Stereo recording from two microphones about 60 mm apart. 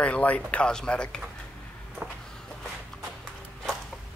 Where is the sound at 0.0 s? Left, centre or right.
Left.